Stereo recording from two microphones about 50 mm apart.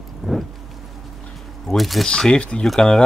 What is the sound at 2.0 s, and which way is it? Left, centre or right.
Speech, centre.